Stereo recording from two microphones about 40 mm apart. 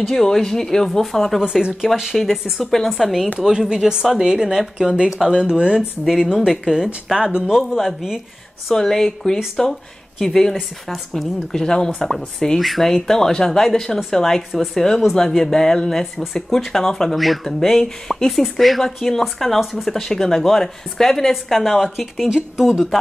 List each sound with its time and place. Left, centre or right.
0.1 s speech: centre
1.4 s speech: right
2.6 s a woman's voice: centre
3.4 s speech: centre
6.0 s a woman's voice: centre
8.6 s a woman's voice: centre
11.5 s a woman's voice: centre